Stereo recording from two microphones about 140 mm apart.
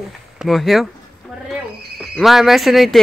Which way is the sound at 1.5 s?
Centre (ahead or behind).